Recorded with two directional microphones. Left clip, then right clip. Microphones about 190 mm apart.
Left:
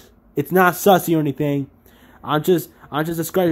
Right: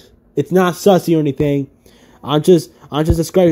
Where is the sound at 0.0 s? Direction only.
Centre (ahead or behind); by 2.6 s 15° right (ahead or behind).